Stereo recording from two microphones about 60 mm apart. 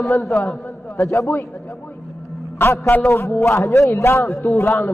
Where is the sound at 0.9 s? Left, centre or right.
Left.